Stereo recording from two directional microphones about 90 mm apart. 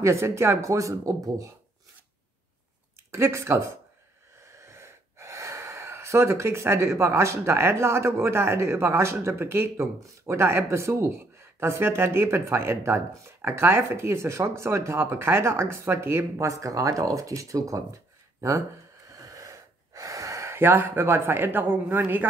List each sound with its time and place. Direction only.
0.0 s speech: 30° right (ahead or behind)
3.1 s speech: 30° right (ahead or behind)
19.0 s gasp: 40° right (ahead or behind); by 22.3 s 20° right (ahead or behind)